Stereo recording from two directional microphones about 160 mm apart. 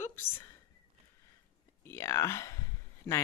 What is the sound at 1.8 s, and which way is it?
Speech, 15° left (ahead or behind).